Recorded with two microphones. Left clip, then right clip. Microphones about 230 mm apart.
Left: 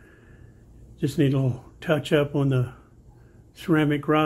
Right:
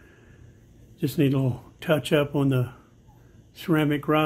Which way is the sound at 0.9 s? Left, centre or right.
Centre.